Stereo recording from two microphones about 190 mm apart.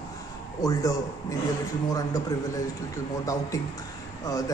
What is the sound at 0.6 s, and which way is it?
Speech, 20° left (ahead or behind).